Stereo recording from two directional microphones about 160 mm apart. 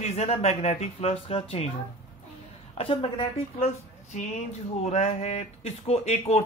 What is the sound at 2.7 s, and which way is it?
Speech, 35° left (ahead or behind).